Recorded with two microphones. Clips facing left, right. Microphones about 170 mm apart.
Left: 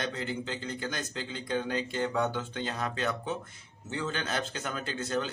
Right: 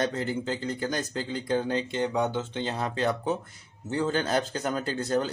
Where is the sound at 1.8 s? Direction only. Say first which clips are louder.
Right 3 dB; 20° right (ahead or behind); by 5.3 s 40° right (ahead or behind).